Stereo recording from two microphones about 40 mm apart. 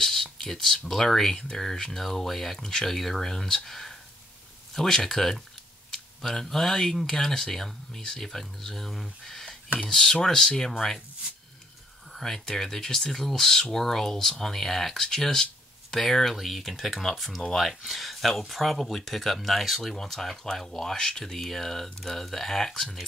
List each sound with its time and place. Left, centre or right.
0.0 s speech: centre
6.4 s speech: centre
12.1 s speech: centre
16.3 s speech: centre